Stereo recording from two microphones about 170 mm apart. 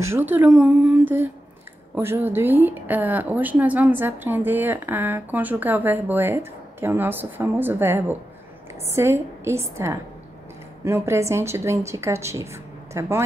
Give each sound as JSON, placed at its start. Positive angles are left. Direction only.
{"t": 0.0, "sound": "a woman's voice", "side_deg": -15}